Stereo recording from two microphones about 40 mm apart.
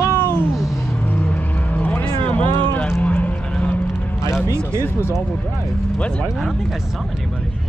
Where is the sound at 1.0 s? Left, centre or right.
Left.